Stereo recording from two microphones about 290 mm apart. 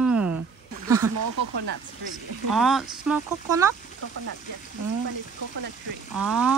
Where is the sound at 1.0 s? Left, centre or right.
Right.